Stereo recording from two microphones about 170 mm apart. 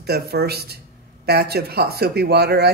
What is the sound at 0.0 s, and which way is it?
Speech, 70° right (ahead or behind).